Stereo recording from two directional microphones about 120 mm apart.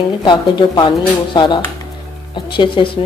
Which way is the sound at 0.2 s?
40° left (ahead or behind).